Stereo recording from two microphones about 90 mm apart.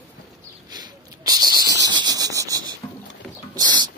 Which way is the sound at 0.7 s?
50° right (ahead or behind).